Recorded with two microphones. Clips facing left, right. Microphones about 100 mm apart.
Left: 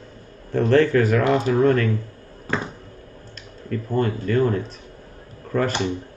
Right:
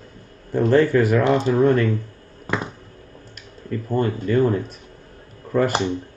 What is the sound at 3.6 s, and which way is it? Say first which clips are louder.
Speech: right 1 dB; 20° right (ahead or behind).